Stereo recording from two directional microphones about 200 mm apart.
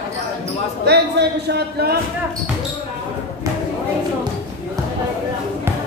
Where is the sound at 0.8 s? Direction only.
55° right (ahead or behind).